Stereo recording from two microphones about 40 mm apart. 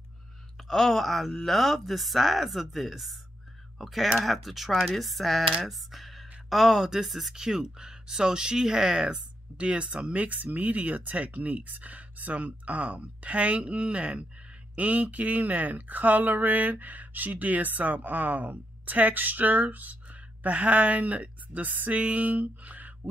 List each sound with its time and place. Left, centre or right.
0.6 s speech: centre
5.6 s a sound: centre
6.5 s speech: centre
7.3 s speech: centre
10.1 s speech: right